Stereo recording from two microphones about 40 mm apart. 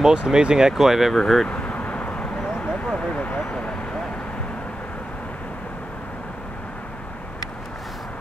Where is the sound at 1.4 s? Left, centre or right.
Left.